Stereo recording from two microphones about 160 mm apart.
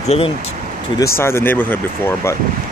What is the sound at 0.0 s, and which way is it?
Speech, 40° left (ahead or behind).